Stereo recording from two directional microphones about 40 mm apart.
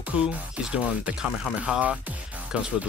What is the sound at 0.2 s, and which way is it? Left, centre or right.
Speech, right.